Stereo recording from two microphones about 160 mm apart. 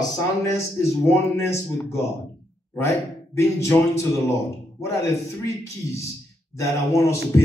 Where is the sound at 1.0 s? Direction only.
15° left (ahead or behind).